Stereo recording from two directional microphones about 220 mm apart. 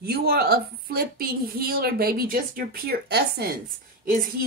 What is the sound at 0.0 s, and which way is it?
A woman's voice, 45° right (ahead or behind).